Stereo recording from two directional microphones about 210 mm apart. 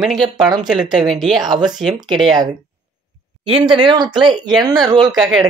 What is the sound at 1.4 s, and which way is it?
Speech, 20° right (ahead or behind).